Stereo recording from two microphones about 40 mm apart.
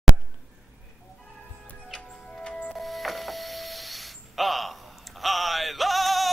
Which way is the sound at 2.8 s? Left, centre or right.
Centre.